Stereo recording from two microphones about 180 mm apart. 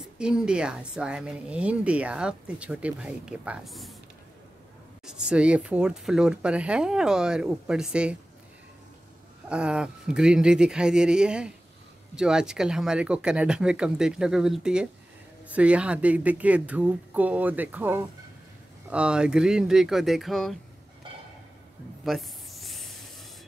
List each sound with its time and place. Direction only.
0.2 s speech: 5° right (ahead or behind)
5.0 s speech: 5° right (ahead or behind)
9.5 s speech: 5° right (ahead or behind)
22.0 s a sound: centre (ahead or behind)